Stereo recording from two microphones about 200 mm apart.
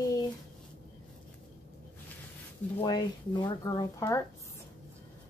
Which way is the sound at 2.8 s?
20° left (ahead or behind).